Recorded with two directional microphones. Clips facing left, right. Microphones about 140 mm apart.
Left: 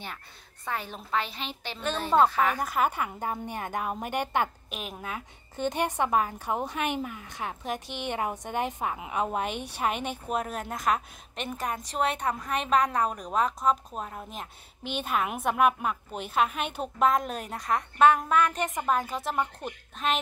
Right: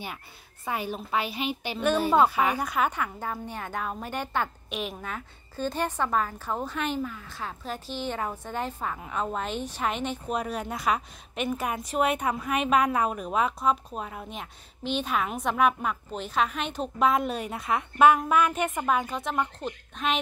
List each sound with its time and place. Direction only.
0.7 s a woman's voice: 10° right (ahead or behind); by 4.5 s 15° left (ahead or behind)
4.6 s a woman's voice: centre (ahead or behind)
5.6 s a woman's voice: 15° left (ahead or behind); by 14.5 s centre (ahead or behind)
14.8 s a woman's voice: 55° left (ahead or behind)
15.0 s a woman's voice: 5° left (ahead or behind)